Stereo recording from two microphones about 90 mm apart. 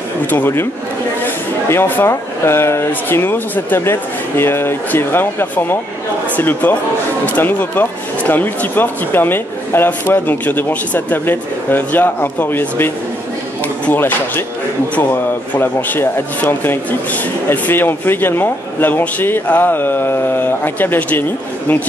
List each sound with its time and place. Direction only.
0.3 s speech: 25° left (ahead or behind)